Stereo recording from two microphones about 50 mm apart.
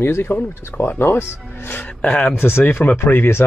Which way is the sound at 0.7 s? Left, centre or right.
Centre.